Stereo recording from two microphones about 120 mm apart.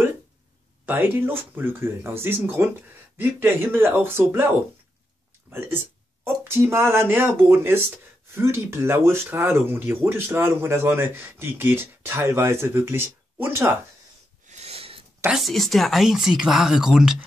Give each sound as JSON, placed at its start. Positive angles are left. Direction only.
{"t": 0.8, "sound": "speech", "side_deg": -15}
{"t": 5.5, "sound": "speech", "side_deg": -20}
{"t": 14.5, "sound": "a sound", "side_deg": -60}
{"t": 15.2, "sound": "speech", "side_deg": 0}